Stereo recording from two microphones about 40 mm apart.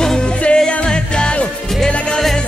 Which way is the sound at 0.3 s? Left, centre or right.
Left.